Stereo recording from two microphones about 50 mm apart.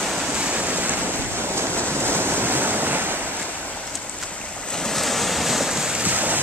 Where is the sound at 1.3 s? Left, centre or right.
Right.